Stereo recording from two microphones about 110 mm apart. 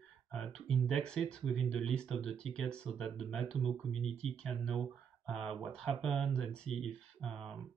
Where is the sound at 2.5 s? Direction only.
5° left (ahead or behind).